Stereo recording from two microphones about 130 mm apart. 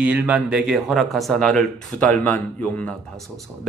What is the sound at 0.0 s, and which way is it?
Speech, 10° right (ahead or behind).